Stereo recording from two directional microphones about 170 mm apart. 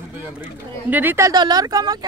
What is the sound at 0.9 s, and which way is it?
Speech, 15° right (ahead or behind).